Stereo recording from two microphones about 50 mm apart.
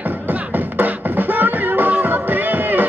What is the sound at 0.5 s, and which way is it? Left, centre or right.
Beatboxing, right.